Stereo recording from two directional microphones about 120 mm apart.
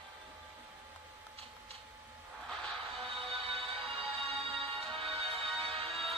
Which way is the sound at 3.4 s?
50° right (ahead or behind).